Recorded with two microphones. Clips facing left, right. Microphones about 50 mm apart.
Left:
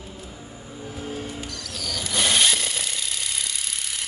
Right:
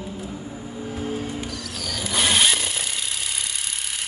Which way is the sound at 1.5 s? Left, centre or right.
Centre.